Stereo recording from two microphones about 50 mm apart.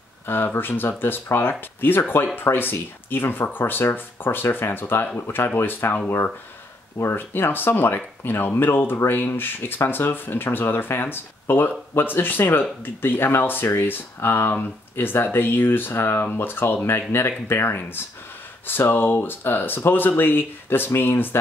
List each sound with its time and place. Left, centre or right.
0.6 s speech: left
7.2 s speech: left